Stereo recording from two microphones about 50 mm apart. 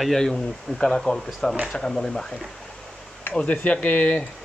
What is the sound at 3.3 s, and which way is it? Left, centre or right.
Speech, left.